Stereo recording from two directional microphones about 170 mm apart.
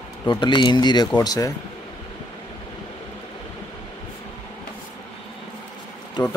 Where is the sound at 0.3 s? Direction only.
25° left (ahead or behind).